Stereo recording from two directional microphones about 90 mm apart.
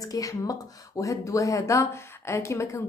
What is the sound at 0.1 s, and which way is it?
A woman's voice, 40° left (ahead or behind).